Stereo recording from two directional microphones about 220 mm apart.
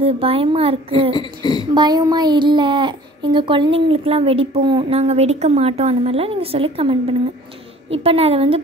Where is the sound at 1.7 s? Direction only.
20° right (ahead or behind).